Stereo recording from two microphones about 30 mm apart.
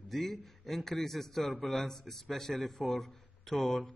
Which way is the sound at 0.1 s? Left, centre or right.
Centre.